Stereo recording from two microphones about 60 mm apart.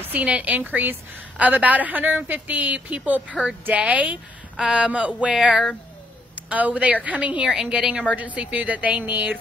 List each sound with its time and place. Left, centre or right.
0.1 s a woman's voice: right
6.5 s a woman's voice: right
7.4 s a woman's voice: centre; by 9.4 s right